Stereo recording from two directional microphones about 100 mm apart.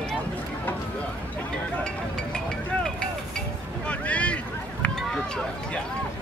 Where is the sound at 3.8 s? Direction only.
15° left (ahead or behind).